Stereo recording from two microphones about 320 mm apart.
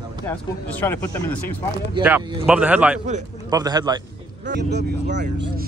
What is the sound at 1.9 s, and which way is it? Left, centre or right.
Speech, centre.